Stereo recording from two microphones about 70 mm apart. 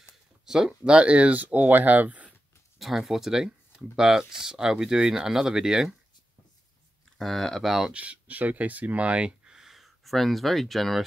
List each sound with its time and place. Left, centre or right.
0.5 s speech: centre
2.8 s speech: centre
7.2 s speech: centre
7.7 s speech: centre
8.0 s speech: right; by 11.1 s centre